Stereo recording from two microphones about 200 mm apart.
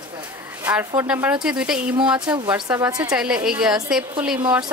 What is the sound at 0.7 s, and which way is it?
Speech, 10° right (ahead or behind).